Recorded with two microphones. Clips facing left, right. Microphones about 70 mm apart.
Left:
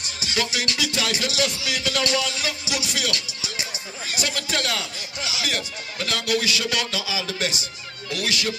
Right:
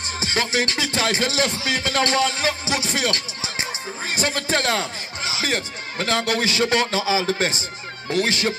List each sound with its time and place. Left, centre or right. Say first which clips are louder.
0.2 s music: right 4 dB; right